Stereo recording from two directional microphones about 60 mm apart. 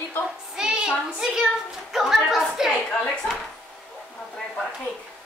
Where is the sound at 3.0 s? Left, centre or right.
Centre.